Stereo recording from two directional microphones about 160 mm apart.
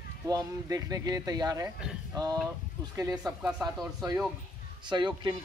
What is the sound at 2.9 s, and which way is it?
Speech, 20° right (ahead or behind).